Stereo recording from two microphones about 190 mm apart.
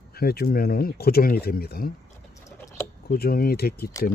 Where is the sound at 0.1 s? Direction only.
55° left (ahead or behind).